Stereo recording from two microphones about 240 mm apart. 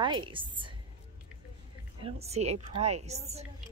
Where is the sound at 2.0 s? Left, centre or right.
Right.